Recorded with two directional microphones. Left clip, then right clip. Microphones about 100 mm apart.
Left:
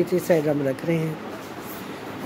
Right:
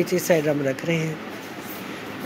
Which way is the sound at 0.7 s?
20° left (ahead or behind).